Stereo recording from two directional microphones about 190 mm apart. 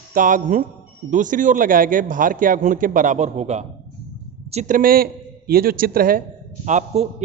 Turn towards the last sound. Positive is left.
turn(degrees=-40)  # may be behind; listen again after turning